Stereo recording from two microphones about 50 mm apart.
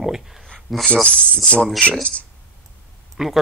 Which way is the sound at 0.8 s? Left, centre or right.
Left.